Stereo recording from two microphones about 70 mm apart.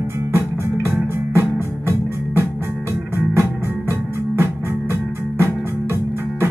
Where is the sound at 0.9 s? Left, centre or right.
Right.